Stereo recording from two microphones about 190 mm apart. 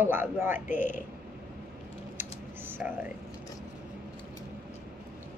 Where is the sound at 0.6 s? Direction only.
40° left (ahead or behind).